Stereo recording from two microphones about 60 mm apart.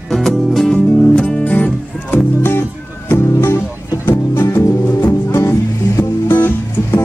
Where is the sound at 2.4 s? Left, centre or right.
Left.